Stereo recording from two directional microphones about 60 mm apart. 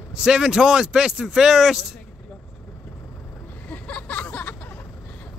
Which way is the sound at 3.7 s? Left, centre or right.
Left.